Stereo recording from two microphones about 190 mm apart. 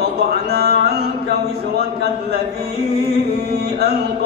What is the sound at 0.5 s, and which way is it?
Music, 55° right (ahead or behind).